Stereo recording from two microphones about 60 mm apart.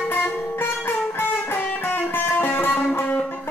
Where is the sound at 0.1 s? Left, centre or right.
Left.